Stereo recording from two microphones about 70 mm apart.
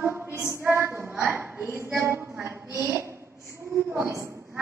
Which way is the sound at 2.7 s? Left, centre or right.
Right.